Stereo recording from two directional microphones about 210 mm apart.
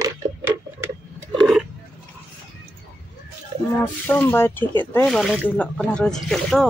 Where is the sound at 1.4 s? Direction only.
Centre (ahead or behind).